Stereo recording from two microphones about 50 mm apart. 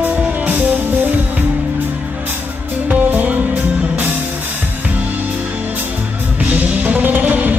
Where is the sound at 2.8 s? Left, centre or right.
Right.